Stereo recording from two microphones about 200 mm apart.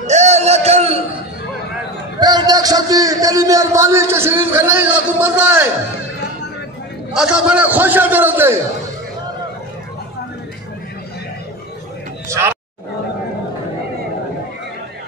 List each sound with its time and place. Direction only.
0.0 s a sound: 35° right (ahead or behind)
2.1 s a man's voice: 20° right (ahead or behind)
7.2 s a man's voice: 5° right (ahead or behind)
12.3 s speech: 15° right (ahead or behind)